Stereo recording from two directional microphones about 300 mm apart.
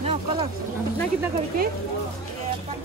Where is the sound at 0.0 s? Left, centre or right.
Centre.